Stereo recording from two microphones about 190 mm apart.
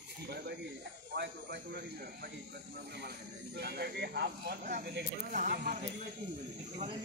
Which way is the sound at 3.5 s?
60° right (ahead or behind).